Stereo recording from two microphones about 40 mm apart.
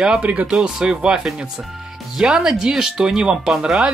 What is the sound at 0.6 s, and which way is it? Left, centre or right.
Speech, centre.